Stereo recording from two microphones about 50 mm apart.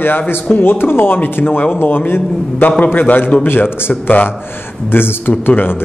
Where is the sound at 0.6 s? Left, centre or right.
Left.